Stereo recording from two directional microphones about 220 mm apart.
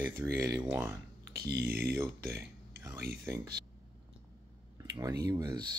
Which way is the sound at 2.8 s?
15° right (ahead or behind).